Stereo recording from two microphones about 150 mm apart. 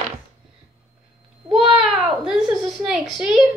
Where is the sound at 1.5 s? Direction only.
35° right (ahead or behind).